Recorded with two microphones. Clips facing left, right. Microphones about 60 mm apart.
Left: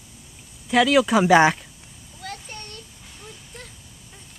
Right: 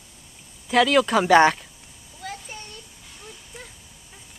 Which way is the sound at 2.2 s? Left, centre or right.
Centre.